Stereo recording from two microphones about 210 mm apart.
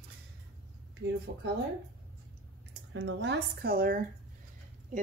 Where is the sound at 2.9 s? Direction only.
60° right (ahead or behind).